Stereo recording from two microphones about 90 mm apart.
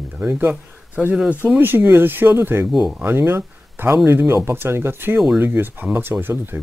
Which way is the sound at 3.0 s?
25° right (ahead or behind).